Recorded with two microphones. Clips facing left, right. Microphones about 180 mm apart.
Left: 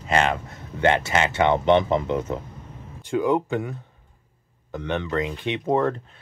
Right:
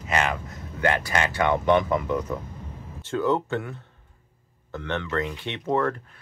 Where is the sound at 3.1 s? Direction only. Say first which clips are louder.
Left 2 dB; 15° left (ahead or behind).